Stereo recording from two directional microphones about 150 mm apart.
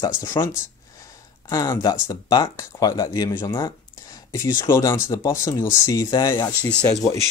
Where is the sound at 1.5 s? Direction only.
25° left (ahead or behind).